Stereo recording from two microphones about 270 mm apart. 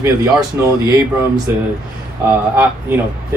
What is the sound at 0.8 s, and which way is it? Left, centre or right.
Speech, centre.